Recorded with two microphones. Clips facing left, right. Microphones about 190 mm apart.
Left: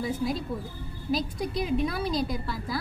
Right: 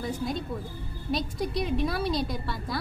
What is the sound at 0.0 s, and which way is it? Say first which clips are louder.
A woman's voice: left 2 dB; centre (ahead or behind).